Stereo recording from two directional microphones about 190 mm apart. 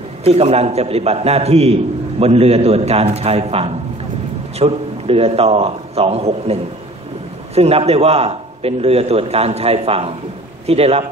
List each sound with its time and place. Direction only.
0.2 s a man's voice: 30° right (ahead or behind)